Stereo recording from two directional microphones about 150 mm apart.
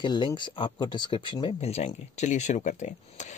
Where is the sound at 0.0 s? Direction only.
30° left (ahead or behind).